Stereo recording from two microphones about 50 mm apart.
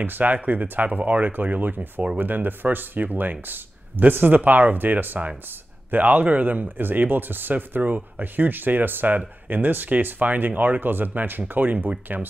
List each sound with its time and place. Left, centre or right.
0.0 s speech: right